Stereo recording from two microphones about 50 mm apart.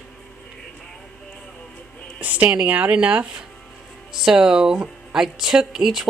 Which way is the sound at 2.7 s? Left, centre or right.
Right.